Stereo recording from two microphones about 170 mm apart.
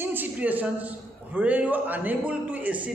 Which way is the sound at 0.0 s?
10° right (ahead or behind).